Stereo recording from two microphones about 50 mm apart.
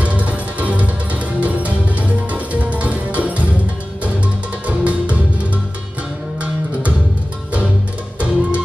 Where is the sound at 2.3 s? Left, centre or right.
Right.